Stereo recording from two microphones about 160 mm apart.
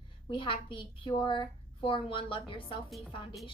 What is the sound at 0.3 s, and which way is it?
A woman's voice, 35° left (ahead or behind).